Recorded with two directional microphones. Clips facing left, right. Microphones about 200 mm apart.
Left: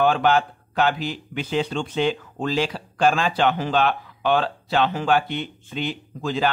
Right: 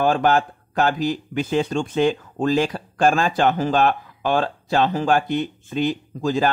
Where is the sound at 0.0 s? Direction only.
45° right (ahead or behind).